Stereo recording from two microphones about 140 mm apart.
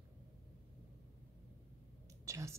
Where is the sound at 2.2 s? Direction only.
20° right (ahead or behind).